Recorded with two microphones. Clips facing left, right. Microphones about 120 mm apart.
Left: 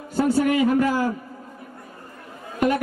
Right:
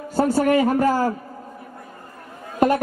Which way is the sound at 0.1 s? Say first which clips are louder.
Right 2 dB; 45° right (ahead or behind).